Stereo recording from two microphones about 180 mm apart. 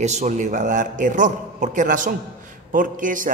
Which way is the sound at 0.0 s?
40° right (ahead or behind).